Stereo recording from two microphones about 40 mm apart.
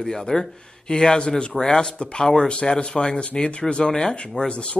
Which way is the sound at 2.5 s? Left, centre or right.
Left.